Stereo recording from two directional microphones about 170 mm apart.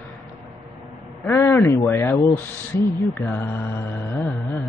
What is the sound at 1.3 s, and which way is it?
Speech, 15° left (ahead or behind).